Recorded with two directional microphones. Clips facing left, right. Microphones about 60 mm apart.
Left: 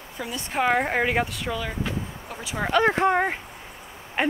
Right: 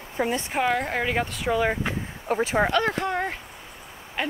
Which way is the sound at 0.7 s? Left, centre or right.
Centre.